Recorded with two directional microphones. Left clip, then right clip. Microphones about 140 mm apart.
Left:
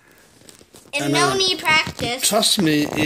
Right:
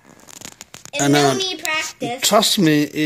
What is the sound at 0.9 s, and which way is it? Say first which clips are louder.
Speech: right 2 dB; 40° right (ahead or behind).